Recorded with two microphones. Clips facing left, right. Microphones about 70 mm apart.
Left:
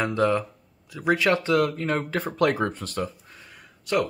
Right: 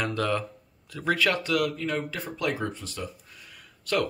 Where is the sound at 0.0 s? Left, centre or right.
Left.